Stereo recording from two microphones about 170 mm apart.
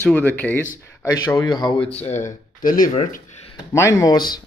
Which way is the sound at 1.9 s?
40° left (ahead or behind).